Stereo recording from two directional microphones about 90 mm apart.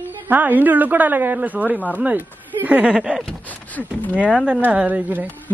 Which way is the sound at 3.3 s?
15° left (ahead or behind).